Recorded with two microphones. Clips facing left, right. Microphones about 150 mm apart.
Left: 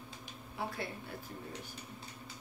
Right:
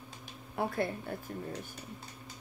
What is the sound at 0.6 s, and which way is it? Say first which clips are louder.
Speech: right 7 dB; 50° right (ahead or behind).